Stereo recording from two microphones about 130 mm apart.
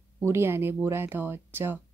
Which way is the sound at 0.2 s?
20° right (ahead or behind).